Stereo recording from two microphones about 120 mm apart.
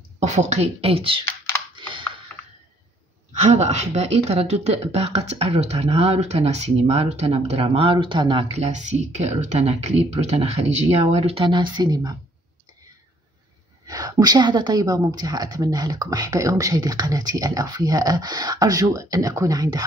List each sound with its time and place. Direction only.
0.2 s speech: 70° right (ahead or behind); by 1.2 s 50° right (ahead or behind)
1.8 s computer keyboard: 45° right (ahead or behind)
3.4 s speech: 70° right (ahead or behind); by 8.5 s 40° right (ahead or behind)
8.5 s speech: 70° right (ahead or behind); by 12.2 s 35° right (ahead or behind)
13.8 s a woman's voice: 30° right (ahead or behind)